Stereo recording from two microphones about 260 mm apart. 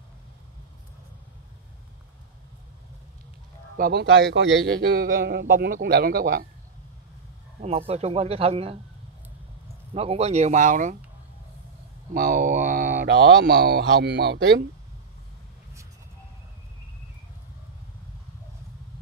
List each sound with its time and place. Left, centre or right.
3.7 s a man's voice: right
7.6 s speech: right
9.9 s speech: right
12.1 s speech: right